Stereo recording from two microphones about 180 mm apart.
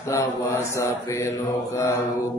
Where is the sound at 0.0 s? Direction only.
15° left (ahead or behind).